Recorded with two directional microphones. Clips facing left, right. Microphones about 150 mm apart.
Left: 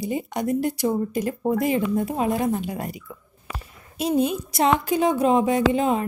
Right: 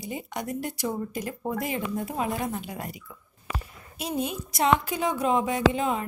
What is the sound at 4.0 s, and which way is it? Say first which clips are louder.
A woman's voice: left 8 dB; 30° left (ahead or behind).